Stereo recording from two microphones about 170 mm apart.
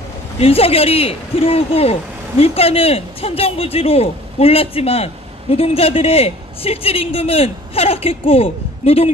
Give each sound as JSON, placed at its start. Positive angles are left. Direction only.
{"t": 0.4, "sound": "a man's voice", "side_deg": 35}